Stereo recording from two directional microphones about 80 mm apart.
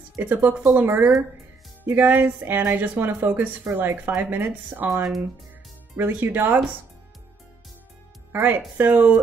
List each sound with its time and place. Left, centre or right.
0.2 s speech: right
5.9 s speech: right
8.3 s speech: right